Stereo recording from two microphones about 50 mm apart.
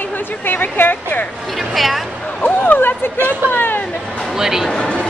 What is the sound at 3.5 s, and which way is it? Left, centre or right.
Hubbub, left.